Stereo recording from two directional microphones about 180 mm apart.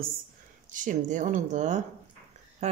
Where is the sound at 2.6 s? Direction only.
40° right (ahead or behind).